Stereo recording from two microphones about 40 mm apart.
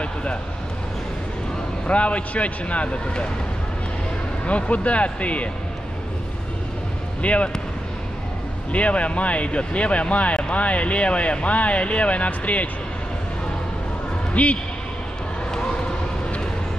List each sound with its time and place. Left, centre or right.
0.0 s speech: left
1.9 s speech: left
4.5 s speech: left
7.2 s speech: left
8.7 s speech: left
14.3 s a man's voice: left